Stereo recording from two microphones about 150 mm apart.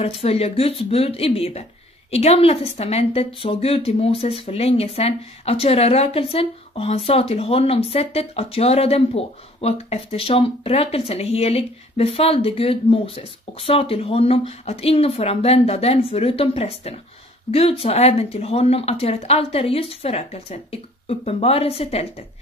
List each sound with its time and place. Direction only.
0.0 s a woman's voice: 40° left (ahead or behind)